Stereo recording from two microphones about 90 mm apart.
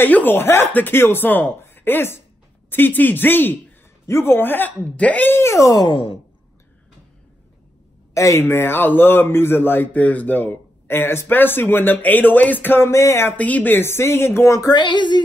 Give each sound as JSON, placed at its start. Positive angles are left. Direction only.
{"t": 0.0, "sound": "speech", "side_deg": 20}
{"t": 5.9, "sound": "speech", "side_deg": 80}
{"t": 8.1, "sound": "speech", "side_deg": 35}
{"t": 13.4, "sound": "speech", "side_deg": 15}
{"t": 14.7, "sound": "female singing", "side_deg": 55}